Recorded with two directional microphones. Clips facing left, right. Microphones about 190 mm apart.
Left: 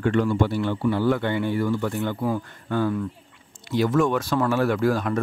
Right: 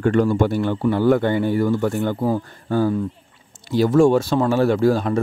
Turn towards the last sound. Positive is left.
turn(degrees=-30)  # may be behind; listen again after turning